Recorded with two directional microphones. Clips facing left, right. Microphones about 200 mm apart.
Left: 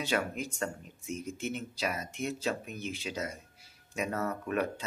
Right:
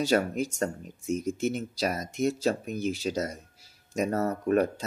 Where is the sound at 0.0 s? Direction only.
40° right (ahead or behind).